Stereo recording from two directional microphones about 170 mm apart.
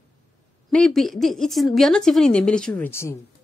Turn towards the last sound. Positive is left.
turn(degrees=15)  # may be behind; listen again after turning